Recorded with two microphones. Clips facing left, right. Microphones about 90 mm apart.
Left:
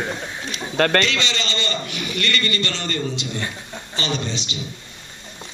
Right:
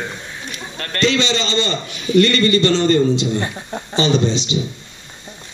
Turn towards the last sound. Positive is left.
turn(degrees=-20)  # may be behind; listen again after turning